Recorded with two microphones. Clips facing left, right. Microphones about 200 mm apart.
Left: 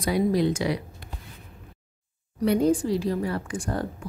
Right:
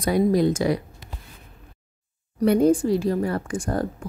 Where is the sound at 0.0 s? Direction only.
45° right (ahead or behind).